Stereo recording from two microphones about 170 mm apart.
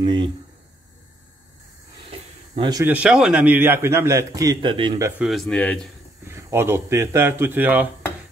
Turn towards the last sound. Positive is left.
turn(degrees=-10)  # may be behind; listen again after turning